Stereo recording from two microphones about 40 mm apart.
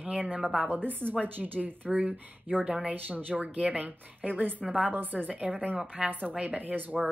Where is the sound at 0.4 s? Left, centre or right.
Centre.